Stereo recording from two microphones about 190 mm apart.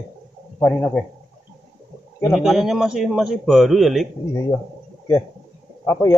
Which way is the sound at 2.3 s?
Centre (ahead or behind).